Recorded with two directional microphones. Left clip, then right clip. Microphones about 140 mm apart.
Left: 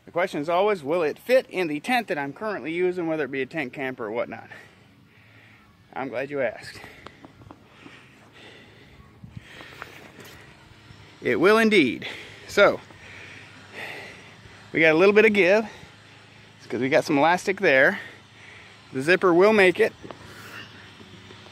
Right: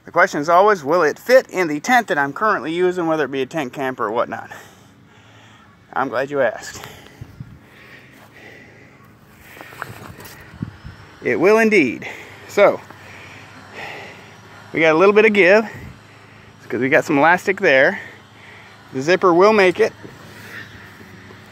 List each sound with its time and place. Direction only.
0.1 s speech: 10° left (ahead or behind)
5.9 s speech: centre (ahead or behind)
11.2 s speech: 25° left (ahead or behind)
13.7 s a sound: 25° left (ahead or behind)
15.0 s speech: 25° left (ahead or behind)
16.6 s speech: 10° left (ahead or behind)
17.5 s speech: 40° left (ahead or behind)
17.7 s speech: 25° left (ahead or behind)
19.6 s speech: 50° left (ahead or behind)